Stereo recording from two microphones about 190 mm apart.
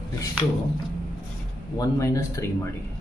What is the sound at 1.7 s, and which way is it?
Speech, 15° left (ahead or behind).